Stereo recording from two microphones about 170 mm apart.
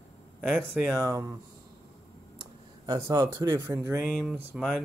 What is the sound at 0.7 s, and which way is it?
Speech, 15° right (ahead or behind).